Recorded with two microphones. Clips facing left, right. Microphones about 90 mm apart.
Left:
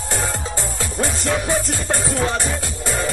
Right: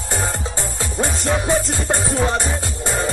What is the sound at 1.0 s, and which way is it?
Music, 20° right (ahead or behind).